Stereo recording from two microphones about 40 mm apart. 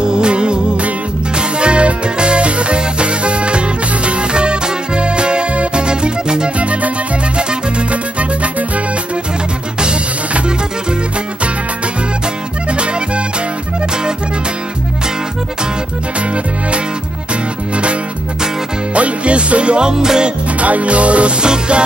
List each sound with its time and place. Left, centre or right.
0.0 s music: right
6.6 s music: right
7.9 s music: right
9.8 s music: right
12.7 s accordion: right
18.9 s music: right
20.6 s music: right